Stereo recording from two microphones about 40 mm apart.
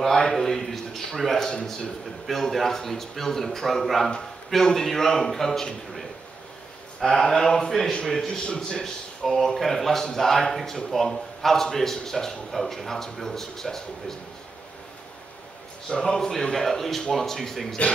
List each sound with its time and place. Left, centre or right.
0.0 s a man's voice: centre
1.4 s a man's voice: left
2.2 s a man's voice: centre
7.0 s a man's voice: centre
15.9 s a man's voice: centre